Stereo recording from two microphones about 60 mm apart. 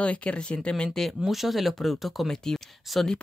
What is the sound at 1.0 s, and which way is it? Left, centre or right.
Speech, centre.